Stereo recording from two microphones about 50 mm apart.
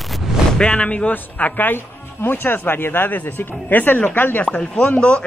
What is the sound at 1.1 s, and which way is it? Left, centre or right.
Speech, left.